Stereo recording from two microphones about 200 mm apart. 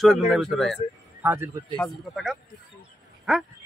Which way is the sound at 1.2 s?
10° right (ahead or behind).